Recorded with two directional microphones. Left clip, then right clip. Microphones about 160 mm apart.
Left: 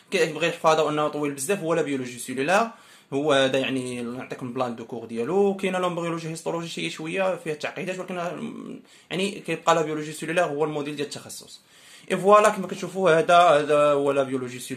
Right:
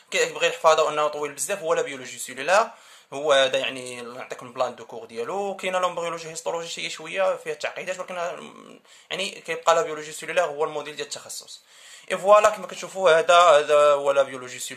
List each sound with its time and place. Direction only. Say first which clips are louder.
0.1 s speech: right 1 dB; 25° right (ahead or behind)